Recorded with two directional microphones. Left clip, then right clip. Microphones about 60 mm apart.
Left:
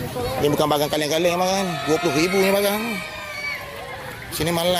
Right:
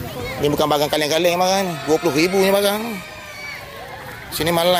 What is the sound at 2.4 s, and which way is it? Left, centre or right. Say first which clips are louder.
Speech: right 3 dB; right.